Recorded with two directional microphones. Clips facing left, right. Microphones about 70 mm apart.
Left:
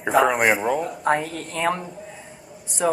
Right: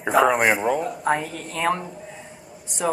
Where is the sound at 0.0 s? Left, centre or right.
Centre.